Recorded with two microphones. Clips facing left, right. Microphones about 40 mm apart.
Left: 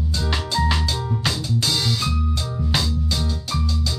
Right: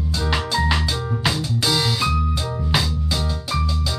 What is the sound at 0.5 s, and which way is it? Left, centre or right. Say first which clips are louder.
Drum: even; centre.